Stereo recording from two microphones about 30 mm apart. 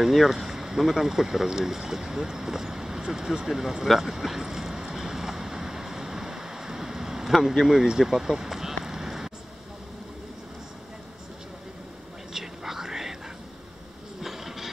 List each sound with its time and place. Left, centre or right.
0.0 s speech: centre
3.8 s vehicle: centre
7.6 s speech: centre
8.8 s a sound: centre
12.3 s whispering: centre
14.2 s printer: centre